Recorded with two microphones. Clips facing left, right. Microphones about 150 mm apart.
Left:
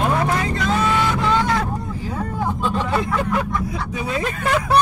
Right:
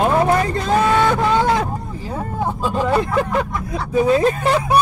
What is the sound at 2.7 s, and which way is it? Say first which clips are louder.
Speech: right 4 dB; 25° right (ahead or behind).